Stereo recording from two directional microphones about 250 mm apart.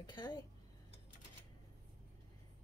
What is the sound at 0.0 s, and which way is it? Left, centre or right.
Speech, centre.